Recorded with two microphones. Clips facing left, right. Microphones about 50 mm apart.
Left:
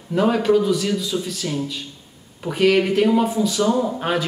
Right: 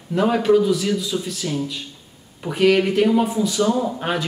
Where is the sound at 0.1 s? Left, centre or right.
Centre.